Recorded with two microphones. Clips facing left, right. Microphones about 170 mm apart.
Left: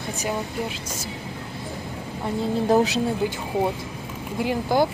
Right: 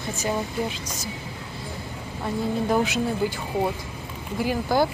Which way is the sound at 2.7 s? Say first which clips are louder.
Left 5 dB; 40° left (ahead or behind).